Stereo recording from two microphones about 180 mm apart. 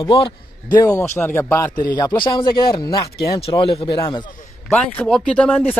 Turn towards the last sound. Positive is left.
turn(degrees=5)  # may be behind; listen again after turning